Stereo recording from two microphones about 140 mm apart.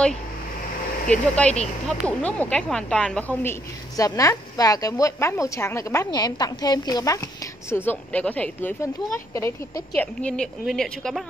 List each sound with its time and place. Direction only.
1.0 s speech: 10° left (ahead or behind)
3.9 s a woman's voice: 25° left (ahead or behind)
7.7 s speech: 15° left (ahead or behind)
9.9 s a woman's voice: 10° left (ahead or behind)